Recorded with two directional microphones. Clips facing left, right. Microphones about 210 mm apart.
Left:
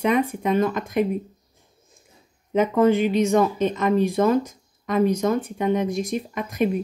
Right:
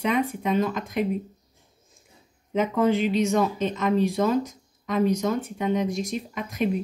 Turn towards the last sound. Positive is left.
turn(degrees=55)  # may be behind; listen again after turning